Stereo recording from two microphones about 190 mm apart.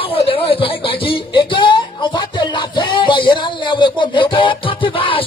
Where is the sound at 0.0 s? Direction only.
30° left (ahead or behind).